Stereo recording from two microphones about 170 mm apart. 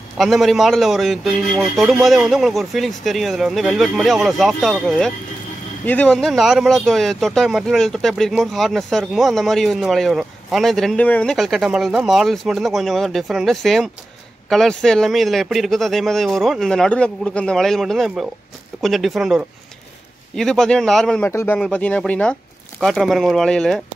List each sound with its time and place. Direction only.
0.2 s speech: centre (ahead or behind)
21.3 s speech: 15° left (ahead or behind)